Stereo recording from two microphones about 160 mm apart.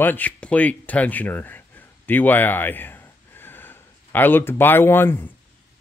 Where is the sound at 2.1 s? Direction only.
10° left (ahead or behind).